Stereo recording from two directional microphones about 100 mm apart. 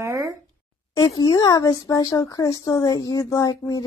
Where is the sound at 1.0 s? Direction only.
45° left (ahead or behind).